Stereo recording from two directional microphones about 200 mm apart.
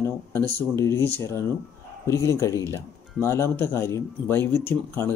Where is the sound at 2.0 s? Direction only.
15° left (ahead or behind).